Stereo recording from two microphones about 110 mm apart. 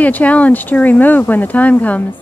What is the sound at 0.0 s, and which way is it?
Speech, 15° left (ahead or behind).